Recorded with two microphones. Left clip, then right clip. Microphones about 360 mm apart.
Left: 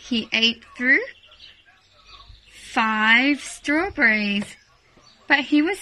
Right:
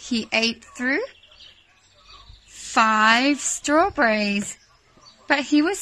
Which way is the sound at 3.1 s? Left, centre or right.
Right.